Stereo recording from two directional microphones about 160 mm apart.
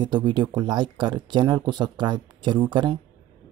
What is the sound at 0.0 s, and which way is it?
Speech, 25° right (ahead or behind).